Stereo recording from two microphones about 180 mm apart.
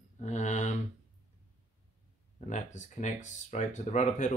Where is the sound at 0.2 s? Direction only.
40° left (ahead or behind).